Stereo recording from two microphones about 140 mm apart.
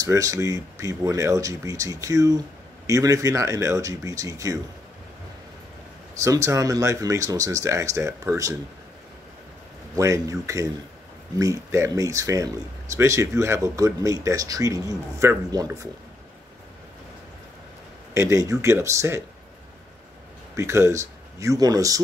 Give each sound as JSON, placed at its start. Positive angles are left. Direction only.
{"t": 0.0, "sound": "speech", "side_deg": -25}
{"t": 6.2, "sound": "speech", "side_deg": -20}
{"t": 9.9, "sound": "speech", "side_deg": -20}
{"t": 18.1, "sound": "speech", "side_deg": -20}
{"t": 20.5, "sound": "speech", "side_deg": -20}